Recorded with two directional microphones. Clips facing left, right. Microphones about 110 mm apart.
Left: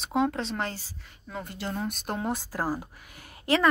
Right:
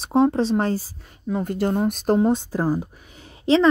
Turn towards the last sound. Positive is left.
turn(degrees=-20)  # may be behind; listen again after turning